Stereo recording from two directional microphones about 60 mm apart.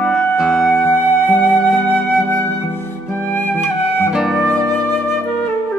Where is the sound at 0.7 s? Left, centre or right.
Left.